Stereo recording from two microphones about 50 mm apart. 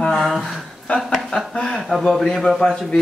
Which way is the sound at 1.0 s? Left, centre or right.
Centre.